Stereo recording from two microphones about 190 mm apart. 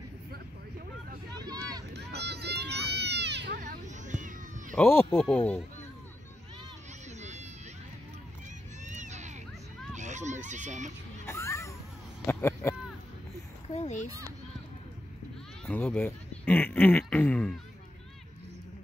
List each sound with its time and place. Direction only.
1.3 s vehicle: 20° right (ahead or behind)
2.0 s children playing: 60° right (ahead or behind)
3.8 s cat: 40° right (ahead or behind)
4.7 s speech: 10° left (ahead or behind)
7.2 s a sound: 35° right (ahead or behind)
8.8 s a sound: 40° right (ahead or behind)
11.2 s children playing: 15° left (ahead or behind)
12.3 s a sound: 10° left (ahead or behind)
13.7 s a child's voice: 35° left (ahead or behind)
15.6 s speech: 5° left (ahead or behind)